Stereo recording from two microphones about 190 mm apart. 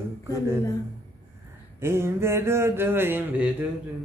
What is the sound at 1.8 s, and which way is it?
Speech, 15° right (ahead or behind).